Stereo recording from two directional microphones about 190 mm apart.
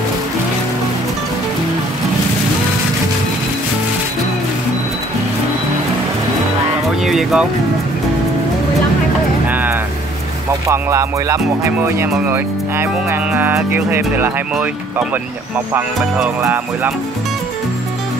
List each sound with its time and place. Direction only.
7.1 s music: centre (ahead or behind)
9.5 s vehicle: 10° right (ahead or behind)
10.7 s speech: 15° right (ahead or behind)